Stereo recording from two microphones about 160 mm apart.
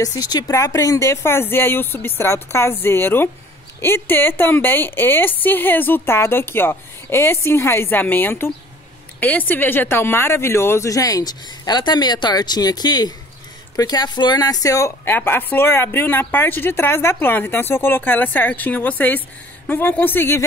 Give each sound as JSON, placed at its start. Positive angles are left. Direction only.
{"t": 0.0, "sound": "speech", "side_deg": 20}